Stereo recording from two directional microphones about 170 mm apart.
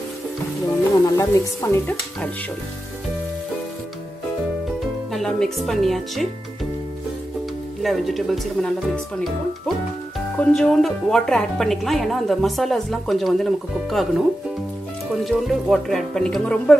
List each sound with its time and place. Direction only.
1.1 s speech: 20° left (ahead or behind)
5.1 s a woman's voice: centre (ahead or behind)
7.8 s a woman's voice: centre (ahead or behind)